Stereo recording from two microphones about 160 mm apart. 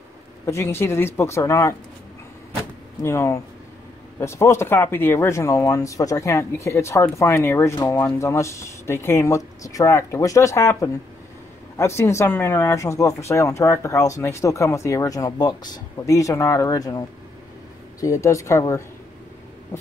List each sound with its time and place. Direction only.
0.5 s speech: 15° left (ahead or behind)
3.0 s speech: 15° left (ahead or behind)
18.0 s speech: 20° left (ahead or behind)